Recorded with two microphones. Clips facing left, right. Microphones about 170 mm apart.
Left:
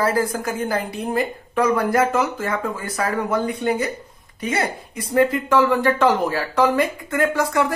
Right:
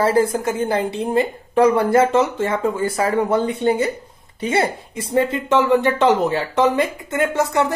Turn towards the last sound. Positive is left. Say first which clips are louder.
# right 1 dB
turn(degrees=-25)  # may be behind; listen again after turning